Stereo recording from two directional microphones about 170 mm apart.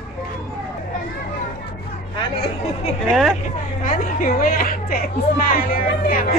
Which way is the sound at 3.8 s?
55° left (ahead or behind).